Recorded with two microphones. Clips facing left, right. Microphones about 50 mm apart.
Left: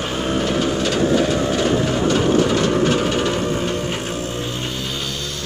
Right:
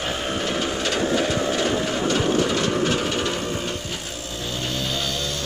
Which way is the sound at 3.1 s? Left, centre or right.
Left.